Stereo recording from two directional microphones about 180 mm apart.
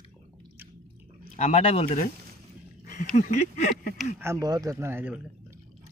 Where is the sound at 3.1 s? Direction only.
45° left (ahead or behind).